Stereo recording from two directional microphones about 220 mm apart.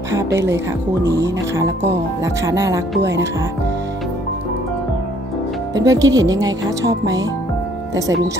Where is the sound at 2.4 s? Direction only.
15° right (ahead or behind).